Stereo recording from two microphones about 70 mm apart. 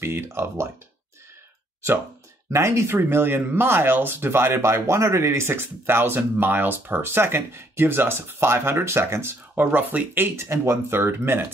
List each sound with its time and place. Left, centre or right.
0.0 s speech: right
2.5 s speech: right